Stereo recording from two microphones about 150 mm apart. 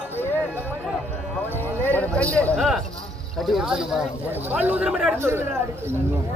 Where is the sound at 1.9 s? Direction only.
10° left (ahead or behind).